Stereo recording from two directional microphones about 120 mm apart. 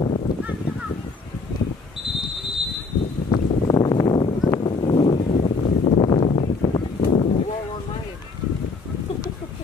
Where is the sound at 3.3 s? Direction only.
35° left (ahead or behind); by 7.2 s 65° left (ahead or behind).